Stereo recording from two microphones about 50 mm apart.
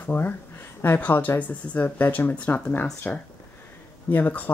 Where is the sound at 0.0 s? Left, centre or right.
Left.